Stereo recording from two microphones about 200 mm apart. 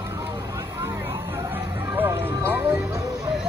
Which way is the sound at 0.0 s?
15° right (ahead or behind).